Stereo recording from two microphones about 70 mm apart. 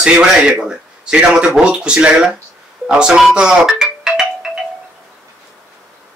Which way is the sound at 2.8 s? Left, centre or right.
Centre.